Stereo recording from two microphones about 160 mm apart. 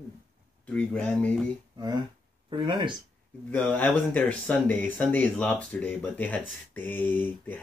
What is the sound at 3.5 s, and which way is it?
Speech, 10° left (ahead or behind).